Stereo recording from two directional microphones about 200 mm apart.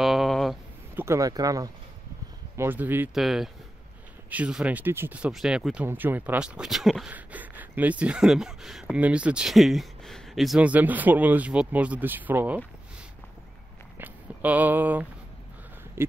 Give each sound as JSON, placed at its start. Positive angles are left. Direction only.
{"t": 0.0, "sound": "a sound", "side_deg": 0}
{"t": 0.9, "sound": "speech", "side_deg": -15}
{"t": 13.9, "sound": "speech", "side_deg": -10}